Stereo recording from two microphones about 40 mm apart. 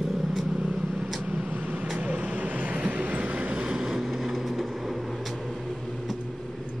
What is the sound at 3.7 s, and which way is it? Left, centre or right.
Vehicle, centre.